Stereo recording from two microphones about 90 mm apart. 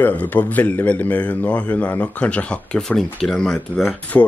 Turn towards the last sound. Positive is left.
turn(degrees=15)  # may be behind; listen again after turning